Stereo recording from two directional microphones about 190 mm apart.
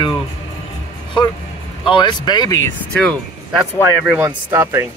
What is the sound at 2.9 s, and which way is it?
Speech, centre (ahead or behind).